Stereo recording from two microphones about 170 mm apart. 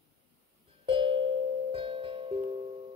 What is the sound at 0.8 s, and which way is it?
Music, 30° right (ahead or behind).